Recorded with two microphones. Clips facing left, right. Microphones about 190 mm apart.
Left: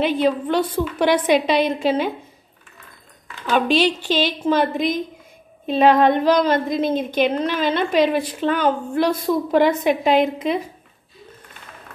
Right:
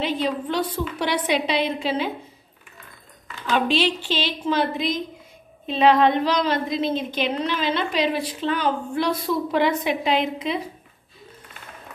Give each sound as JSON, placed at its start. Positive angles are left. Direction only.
{"t": 0.0, "sound": "a woman's voice", "side_deg": 55}
{"t": 3.5, "sound": "a woman's voice", "side_deg": 45}